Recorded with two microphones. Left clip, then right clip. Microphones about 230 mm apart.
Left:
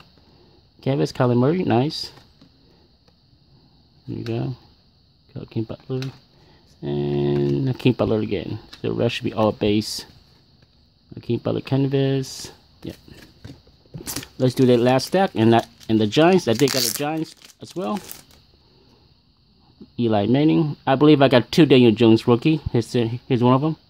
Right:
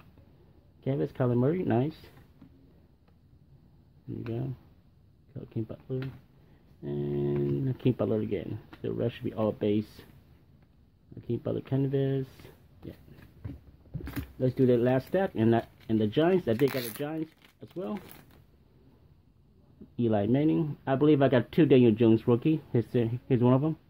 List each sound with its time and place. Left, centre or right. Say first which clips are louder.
0.7 s speech: left 9 dB; left
4.1 s speech: left 9 dB; left
11.1 s speech: left 9 dB; left
14.1 s speech: left 8 dB; left
16.5 s speech: left 9 dB; centre
17.0 s speech: left 10 dB; left
20.0 s speech: left 8 dB; centre